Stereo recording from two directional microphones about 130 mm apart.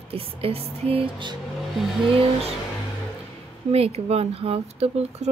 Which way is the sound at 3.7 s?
50° right (ahead or behind).